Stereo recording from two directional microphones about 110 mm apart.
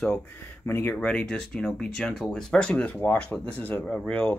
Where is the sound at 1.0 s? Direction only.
5° left (ahead or behind).